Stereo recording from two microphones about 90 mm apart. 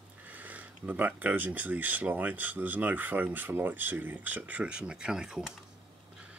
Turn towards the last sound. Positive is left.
turn(degrees=-5)  # may be behind; listen again after turning